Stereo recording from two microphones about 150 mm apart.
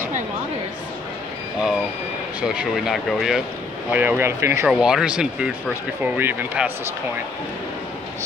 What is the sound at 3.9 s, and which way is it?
Speech, 10° right (ahead or behind).